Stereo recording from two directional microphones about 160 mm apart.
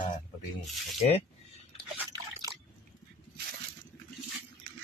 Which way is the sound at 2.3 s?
25° right (ahead or behind).